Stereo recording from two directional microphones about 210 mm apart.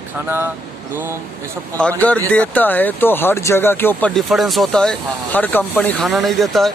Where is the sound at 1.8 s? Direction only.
5° left (ahead or behind).